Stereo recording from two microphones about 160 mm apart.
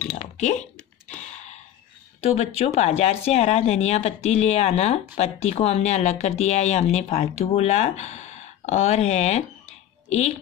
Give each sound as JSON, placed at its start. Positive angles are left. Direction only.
{"t": 0.0, "sound": "typing", "side_deg": 50}
{"t": 2.3, "sound": "speech", "side_deg": 40}